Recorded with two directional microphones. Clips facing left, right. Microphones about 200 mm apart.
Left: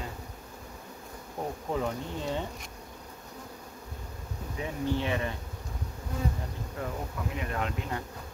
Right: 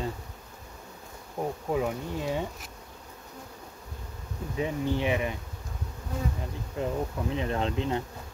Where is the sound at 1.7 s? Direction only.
10° right (ahead or behind).